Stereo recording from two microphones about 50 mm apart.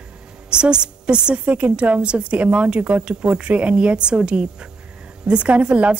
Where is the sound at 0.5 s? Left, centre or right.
Centre.